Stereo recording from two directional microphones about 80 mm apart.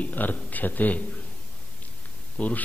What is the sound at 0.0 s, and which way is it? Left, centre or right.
A man's voice, left.